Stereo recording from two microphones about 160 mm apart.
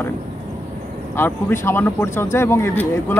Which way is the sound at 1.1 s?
15° left (ahead or behind).